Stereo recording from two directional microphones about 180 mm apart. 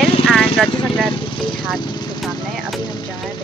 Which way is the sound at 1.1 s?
25° left (ahead or behind).